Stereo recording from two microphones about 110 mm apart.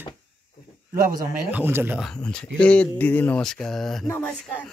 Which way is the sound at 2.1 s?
10° left (ahead or behind).